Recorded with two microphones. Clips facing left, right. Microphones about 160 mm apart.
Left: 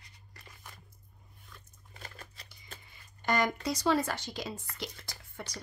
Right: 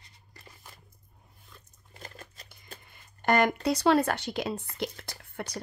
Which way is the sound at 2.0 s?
35° right (ahead or behind).